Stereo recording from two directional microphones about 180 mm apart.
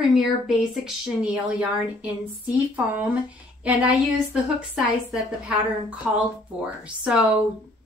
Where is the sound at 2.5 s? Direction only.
10° right (ahead or behind).